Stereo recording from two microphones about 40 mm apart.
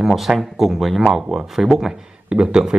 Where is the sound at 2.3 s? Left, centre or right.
Right.